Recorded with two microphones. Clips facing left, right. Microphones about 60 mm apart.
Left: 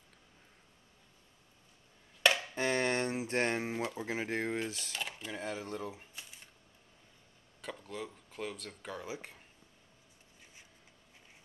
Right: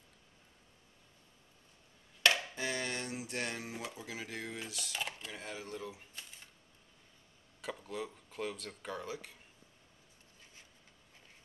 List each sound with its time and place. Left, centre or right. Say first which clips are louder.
2.5 s speech: left 6 dB; left
4.9 s a sound: even; centre
5.3 s speech: left 5 dB; left
7.6 s speech: right 1 dB; centre